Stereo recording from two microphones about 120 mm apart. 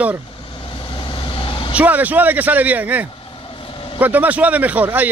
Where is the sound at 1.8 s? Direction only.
15° right (ahead or behind).